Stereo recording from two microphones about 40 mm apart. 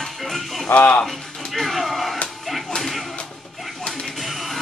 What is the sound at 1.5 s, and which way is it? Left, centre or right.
Music, centre.